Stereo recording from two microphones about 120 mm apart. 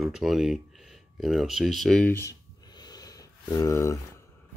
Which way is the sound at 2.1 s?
20° left (ahead or behind).